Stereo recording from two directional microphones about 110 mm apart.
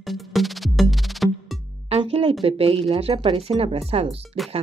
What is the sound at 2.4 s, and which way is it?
Speech, 60° right (ahead or behind).